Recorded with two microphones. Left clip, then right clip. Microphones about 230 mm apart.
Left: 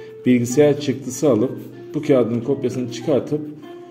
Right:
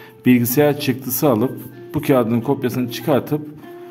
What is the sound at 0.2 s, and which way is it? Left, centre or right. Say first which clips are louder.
A man's voice: even; right.